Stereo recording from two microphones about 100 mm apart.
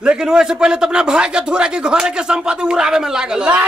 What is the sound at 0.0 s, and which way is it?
Speech, 10° right (ahead or behind).